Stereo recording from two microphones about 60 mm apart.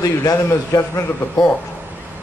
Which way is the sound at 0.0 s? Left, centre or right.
Left.